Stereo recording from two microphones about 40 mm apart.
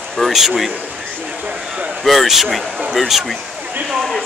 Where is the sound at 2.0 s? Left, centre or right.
Centre.